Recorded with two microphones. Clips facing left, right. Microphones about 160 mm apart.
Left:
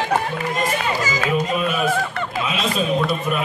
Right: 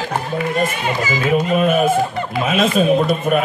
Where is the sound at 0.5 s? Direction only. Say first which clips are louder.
Right 1 dB; 40° left (ahead or behind).